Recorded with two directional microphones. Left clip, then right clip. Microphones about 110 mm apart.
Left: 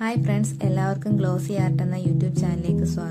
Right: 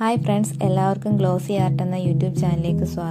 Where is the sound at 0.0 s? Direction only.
30° right (ahead or behind).